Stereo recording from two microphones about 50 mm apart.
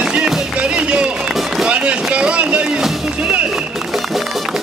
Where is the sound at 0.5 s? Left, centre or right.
Right.